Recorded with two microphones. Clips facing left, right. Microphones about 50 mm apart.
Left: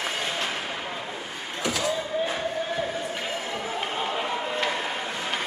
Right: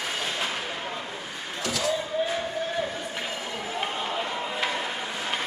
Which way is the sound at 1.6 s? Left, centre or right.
Centre.